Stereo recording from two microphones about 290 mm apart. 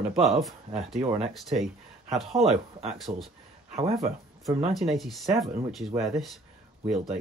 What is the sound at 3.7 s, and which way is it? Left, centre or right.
Speech, right.